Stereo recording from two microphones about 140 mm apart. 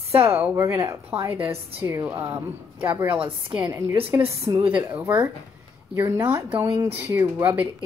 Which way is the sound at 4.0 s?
40° right (ahead or behind).